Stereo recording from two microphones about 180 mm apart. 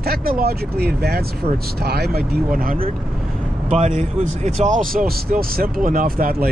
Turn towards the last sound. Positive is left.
turn(degrees=-50)  # may be behind; listen again after turning